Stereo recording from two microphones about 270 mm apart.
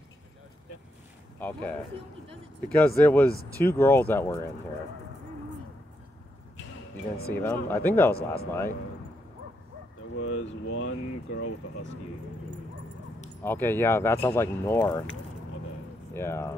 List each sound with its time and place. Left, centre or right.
1.4 s speech: centre
7.3 s speech: centre
8.1 s speech: left
10.1 s speech: left
13.4 s speech: centre
16.1 s speech: centre